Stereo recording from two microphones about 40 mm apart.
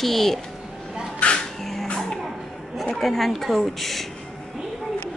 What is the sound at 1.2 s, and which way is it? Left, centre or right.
Music, left.